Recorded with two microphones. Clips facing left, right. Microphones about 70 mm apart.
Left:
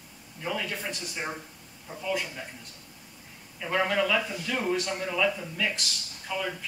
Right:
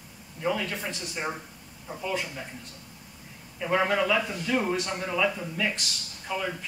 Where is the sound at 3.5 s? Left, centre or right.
Centre.